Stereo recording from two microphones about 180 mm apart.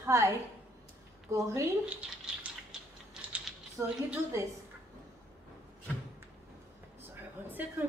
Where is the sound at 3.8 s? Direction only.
5° right (ahead or behind).